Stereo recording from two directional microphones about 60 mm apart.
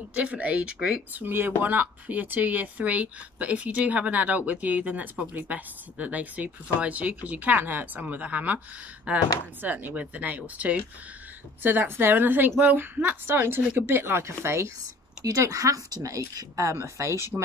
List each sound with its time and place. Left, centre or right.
0.1 s speech: right
1.1 s a woman's voice: right
15.2 s speech: right